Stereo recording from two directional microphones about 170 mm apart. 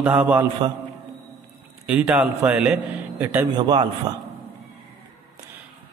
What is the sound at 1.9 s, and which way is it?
A man's voice, 5° right (ahead or behind).